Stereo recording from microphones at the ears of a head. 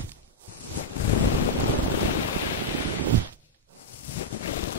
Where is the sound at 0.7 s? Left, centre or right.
Left.